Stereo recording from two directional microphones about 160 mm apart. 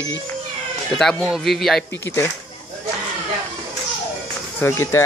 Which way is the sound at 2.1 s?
15° left (ahead or behind).